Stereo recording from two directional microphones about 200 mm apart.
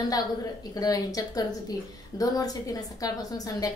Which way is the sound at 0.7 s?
20° left (ahead or behind).